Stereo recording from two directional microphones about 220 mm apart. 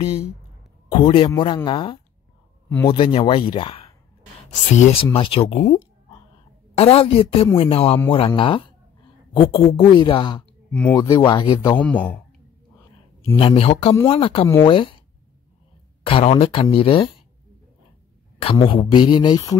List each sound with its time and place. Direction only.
0.8 s speech: 25° left (ahead or behind)
6.8 s speech: 25° left (ahead or behind)
10.7 s speech: 5° left (ahead or behind)
11.0 s speech: 20° left (ahead or behind)
11.8 s a man's voice: 5° left (ahead or behind)
13.4 s speech: 25° left (ahead or behind)
16.1 s speech: 25° left (ahead or behind)
18.4 s speech: 25° left (ahead or behind)